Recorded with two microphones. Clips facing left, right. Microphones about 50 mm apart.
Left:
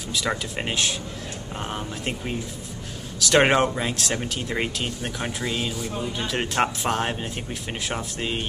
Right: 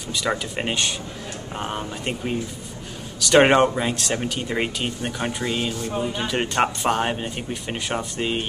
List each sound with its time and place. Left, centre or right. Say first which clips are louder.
0.1 s speech: right 2 dB; centre
5.9 s speech: right 6 dB; centre
6.2 s speech: right 1 dB; centre